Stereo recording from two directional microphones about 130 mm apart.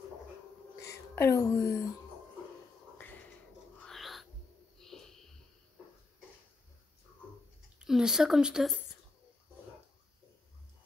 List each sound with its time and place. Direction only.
0.7 s speech: 25° left (ahead or behind)
3.8 s music: centre (ahead or behind)
4.7 s wheeze: 5° left (ahead or behind)
7.8 s speech: 5° right (ahead or behind)